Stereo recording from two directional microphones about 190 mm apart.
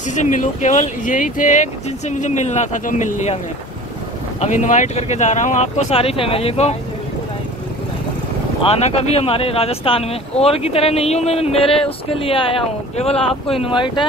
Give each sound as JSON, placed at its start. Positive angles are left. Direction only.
{"t": 0.1, "sound": "speech", "side_deg": 40}
{"t": 4.4, "sound": "speech", "side_deg": 40}
{"t": 8.6, "sound": "speech", "side_deg": 30}
{"t": 13.2, "sound": "speech", "side_deg": 0}
{"t": 13.6, "sound": "speech", "side_deg": 25}